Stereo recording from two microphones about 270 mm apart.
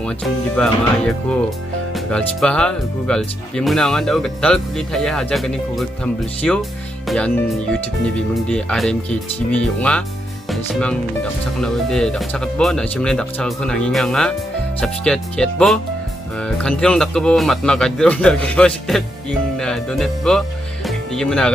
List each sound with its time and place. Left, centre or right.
0.6 s speech: centre